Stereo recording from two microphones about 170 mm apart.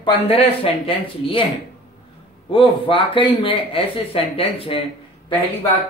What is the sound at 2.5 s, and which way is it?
Speech, 30° left (ahead or behind).